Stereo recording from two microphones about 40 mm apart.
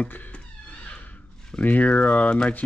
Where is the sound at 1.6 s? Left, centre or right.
Left.